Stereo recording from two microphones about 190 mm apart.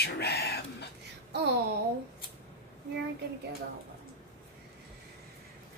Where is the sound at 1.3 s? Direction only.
60° right (ahead or behind).